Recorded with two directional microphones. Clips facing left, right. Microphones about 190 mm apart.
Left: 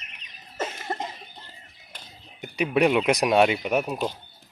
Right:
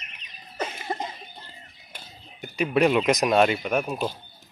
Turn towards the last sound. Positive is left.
turn(degrees=20)  # may be behind; listen again after turning